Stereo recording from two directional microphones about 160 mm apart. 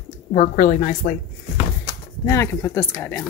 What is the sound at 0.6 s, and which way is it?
Speech, 60° left (ahead or behind).